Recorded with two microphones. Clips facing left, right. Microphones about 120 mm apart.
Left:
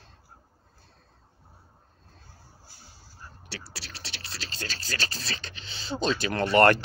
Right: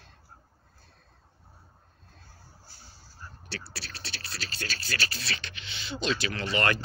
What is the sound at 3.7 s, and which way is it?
Speech, 20° left (ahead or behind).